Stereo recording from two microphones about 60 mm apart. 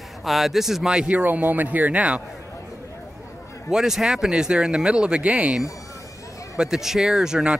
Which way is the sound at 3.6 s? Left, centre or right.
Centre.